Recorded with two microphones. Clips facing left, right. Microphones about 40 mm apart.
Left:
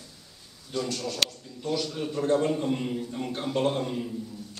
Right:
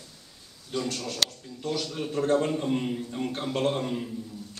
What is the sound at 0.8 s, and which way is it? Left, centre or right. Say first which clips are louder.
Speech: left 1 dB; right.